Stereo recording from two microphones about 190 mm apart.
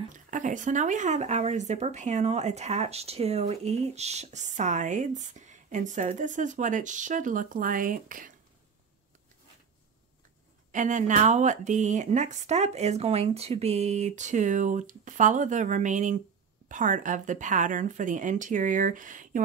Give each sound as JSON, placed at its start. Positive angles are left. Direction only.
{"t": 0.1, "sound": "speech", "side_deg": -40}
{"t": 10.7, "sound": "speech", "side_deg": -40}